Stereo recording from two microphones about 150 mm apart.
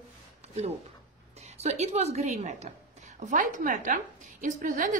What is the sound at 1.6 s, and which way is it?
A woman's voice, 45° right (ahead or behind).